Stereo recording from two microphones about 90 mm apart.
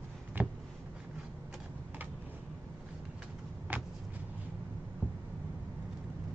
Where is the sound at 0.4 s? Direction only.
20° right (ahead or behind).